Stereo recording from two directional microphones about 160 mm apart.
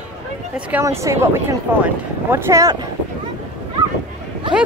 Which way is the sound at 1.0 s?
15° right (ahead or behind).